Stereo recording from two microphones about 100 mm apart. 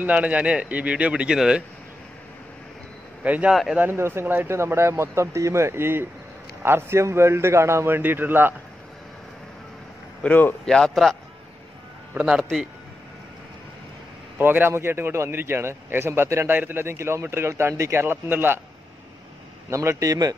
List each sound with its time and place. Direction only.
0.0 s speech: 15° right (ahead or behind)
3.3 s a man's voice: 15° right (ahead or behind)
10.2 s speech: 15° left (ahead or behind)
10.6 s a man's voice: 5° left (ahead or behind)
12.1 s a man's voice: 15° right (ahead or behind)
12.4 s a man's voice: centre (ahead or behind)
14.4 s a man's voice: 20° right (ahead or behind)
19.7 s a man's voice: 30° right (ahead or behind)